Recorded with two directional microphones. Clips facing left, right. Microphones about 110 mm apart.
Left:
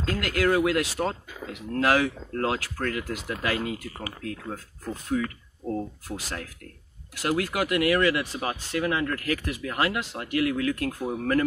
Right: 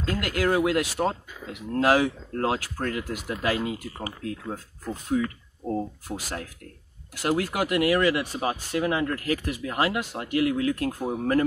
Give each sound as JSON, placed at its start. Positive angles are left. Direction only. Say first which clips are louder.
{"t": 0.1, "sound": "speech", "louder": "left 1 dB", "side_deg": -25}
{"t": 7.2, "sound": "speech", "louder": "right 1 dB", "side_deg": -30}